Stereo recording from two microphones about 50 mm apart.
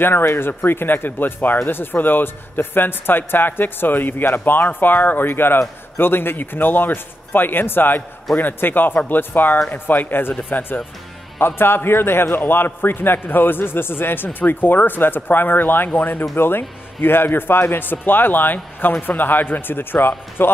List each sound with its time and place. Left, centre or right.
0.7 s a man's voice: left
11.3 s a man's voice: left